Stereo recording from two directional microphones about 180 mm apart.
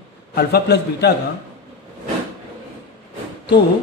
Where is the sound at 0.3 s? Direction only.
65° left (ahead or behind).